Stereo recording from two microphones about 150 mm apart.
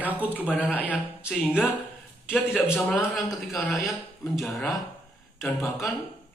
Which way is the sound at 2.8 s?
10° left (ahead or behind).